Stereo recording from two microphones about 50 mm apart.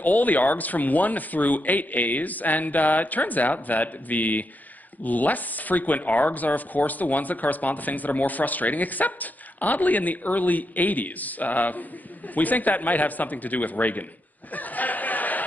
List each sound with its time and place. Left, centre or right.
0.0 s speech: left
14.5 s chatter: left